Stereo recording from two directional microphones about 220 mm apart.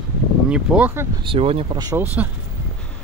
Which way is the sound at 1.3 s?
25° right (ahead or behind).